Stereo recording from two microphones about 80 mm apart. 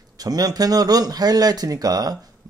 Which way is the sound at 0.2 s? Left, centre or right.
Right.